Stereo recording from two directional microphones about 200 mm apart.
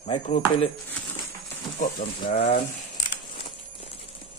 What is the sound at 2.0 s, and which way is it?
Frying, 30° left (ahead or behind).